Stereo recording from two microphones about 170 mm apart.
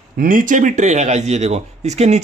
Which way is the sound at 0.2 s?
50° right (ahead or behind).